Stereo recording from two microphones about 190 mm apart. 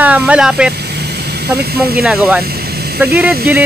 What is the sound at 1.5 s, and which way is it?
Speech, 55° right (ahead or behind).